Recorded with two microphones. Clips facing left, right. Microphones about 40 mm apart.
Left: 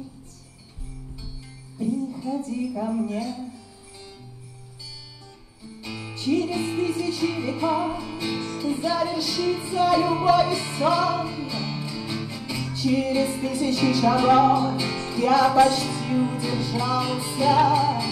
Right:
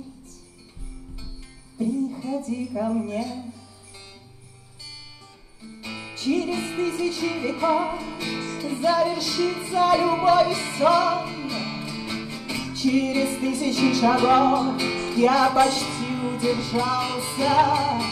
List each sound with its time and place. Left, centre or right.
2.0 s music: centre
5.8 s music: centre
11.5 s music: right
12.6 s music: centre
12.9 s music: centre
15.4 s music: centre
15.8 s music: centre